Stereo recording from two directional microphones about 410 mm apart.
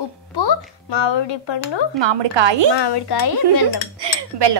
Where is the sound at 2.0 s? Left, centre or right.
Right.